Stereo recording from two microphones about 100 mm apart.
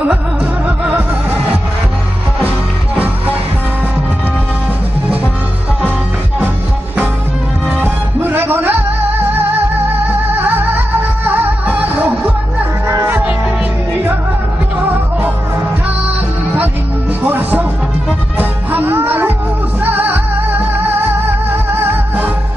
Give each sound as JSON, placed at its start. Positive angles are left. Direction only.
{"t": 0.7, "sound": "music", "side_deg": -10}
{"t": 7.7, "sound": "music", "side_deg": -20}
{"t": 10.3, "sound": "music", "side_deg": -20}
{"t": 17.2, "sound": "music", "side_deg": -20}